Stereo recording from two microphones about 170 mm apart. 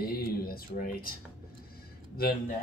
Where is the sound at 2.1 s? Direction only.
60° left (ahead or behind).